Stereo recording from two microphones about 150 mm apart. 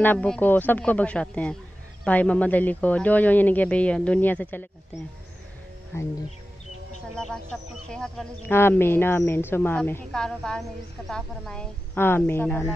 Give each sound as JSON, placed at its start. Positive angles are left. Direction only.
{"t": 0.0, "sound": "speech", "side_deg": 10}
{"t": 5.9, "sound": "speech", "side_deg": 15}
{"t": 7.2, "sound": "speech", "side_deg": 5}
{"t": 8.5, "sound": "speech", "side_deg": 15}